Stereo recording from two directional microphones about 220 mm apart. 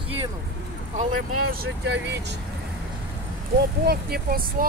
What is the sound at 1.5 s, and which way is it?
Speech, 50° right (ahead or behind).